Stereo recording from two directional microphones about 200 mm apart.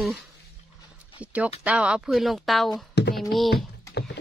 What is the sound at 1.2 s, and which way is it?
Speech, 5° right (ahead or behind).